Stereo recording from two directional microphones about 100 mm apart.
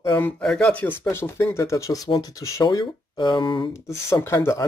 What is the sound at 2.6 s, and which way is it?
Speech, 50° left (ahead or behind).